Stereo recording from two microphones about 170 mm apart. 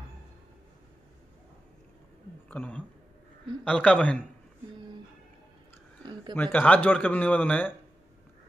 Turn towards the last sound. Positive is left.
turn(degrees=10)  # may be behind; listen again after turning